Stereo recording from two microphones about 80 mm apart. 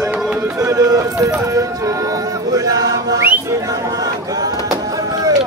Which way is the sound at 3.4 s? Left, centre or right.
Right.